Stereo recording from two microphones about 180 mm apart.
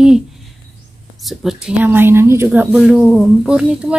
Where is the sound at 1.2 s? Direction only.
Centre (ahead or behind).